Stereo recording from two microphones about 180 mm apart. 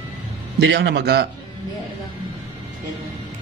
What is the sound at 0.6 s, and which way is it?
Speech, 70° right (ahead or behind).